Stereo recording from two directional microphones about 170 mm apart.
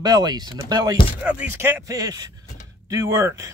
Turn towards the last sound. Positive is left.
turn(degrees=-15)  # may be behind; listen again after turning